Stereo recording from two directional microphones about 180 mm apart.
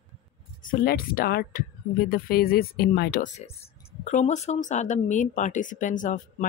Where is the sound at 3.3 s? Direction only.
35° left (ahead or behind).